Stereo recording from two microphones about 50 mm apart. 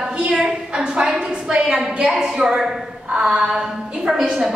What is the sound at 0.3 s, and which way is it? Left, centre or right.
A woman's voice, centre.